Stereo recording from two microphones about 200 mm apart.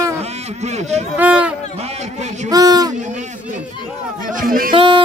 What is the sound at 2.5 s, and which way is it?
Speech, 20° right (ahead or behind).